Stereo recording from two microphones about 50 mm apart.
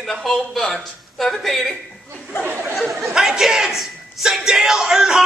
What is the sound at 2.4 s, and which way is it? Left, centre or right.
Speech, right.